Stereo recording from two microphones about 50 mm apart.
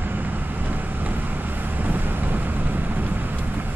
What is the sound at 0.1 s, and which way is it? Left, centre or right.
Vehicle, right.